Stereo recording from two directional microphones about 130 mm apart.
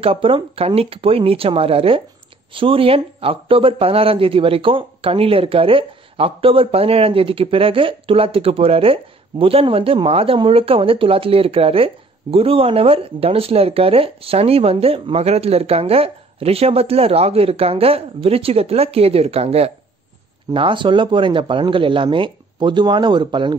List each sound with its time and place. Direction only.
0.0 s a man's voice: 45° right (ahead or behind)
20.5 s speech: 40° right (ahead or behind)